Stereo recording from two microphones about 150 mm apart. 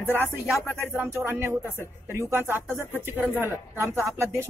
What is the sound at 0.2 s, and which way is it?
Music, 15° left (ahead or behind).